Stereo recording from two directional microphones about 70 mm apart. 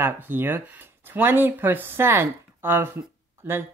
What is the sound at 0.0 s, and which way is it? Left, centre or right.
Speech, right.